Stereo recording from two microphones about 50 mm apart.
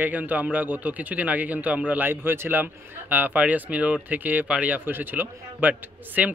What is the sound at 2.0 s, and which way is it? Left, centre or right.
Speech, right.